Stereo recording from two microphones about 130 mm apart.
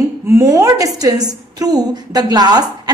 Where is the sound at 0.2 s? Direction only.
20° right (ahead or behind).